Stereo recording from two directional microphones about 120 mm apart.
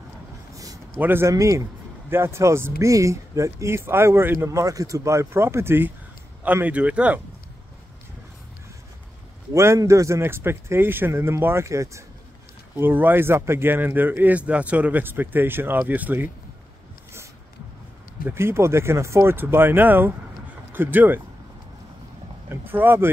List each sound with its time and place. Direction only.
0.9 s a man's voice: 15° right (ahead or behind)
1.3 s a man's voice: 30° right (ahead or behind); by 7.2 s 10° right (ahead or behind)
9.5 s a man's voice: 25° right (ahead or behind)
18.2 s a man's voice: 20° right (ahead or behind)
22.5 s speech: 15° right (ahead or behind)